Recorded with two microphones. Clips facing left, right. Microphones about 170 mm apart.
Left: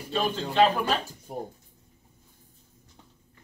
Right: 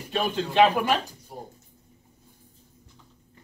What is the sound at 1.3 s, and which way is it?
Speech, 50° left (ahead or behind).